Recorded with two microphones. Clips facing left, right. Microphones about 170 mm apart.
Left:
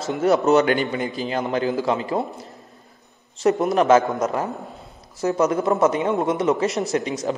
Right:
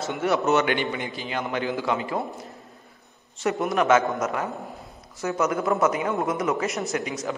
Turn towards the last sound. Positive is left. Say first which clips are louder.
# left 5 dB
turn(degrees=35)  # may be behind; listen again after turning